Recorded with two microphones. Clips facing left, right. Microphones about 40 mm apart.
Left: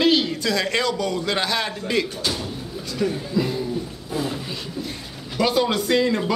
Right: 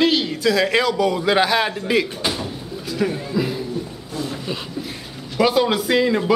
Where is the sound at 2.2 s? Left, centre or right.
Right.